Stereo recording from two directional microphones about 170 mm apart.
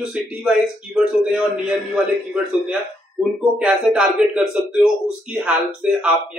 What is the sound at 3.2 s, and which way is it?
Speech, 5° right (ahead or behind).